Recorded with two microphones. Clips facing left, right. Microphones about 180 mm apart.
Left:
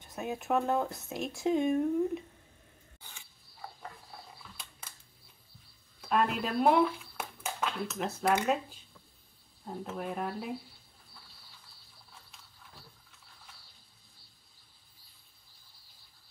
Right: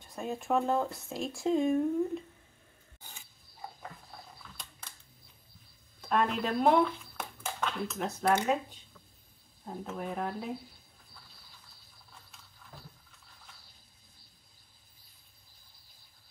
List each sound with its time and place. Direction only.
0.0 s speech: 5° left (ahead or behind)
5.9 s a sound: 5° left (ahead or behind)
6.3 s speech: 5° left (ahead or behind)
9.9 s speech: 5° left (ahead or behind)